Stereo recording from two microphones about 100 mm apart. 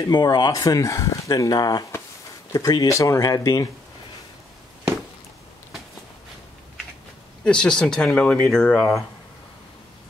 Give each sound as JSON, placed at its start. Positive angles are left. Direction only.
{"t": 0.1, "sound": "speech", "side_deg": 50}
{"t": 0.5, "sound": "speech", "side_deg": 35}
{"t": 2.9, "sound": "speech", "side_deg": 30}
{"t": 7.4, "sound": "speech", "side_deg": 10}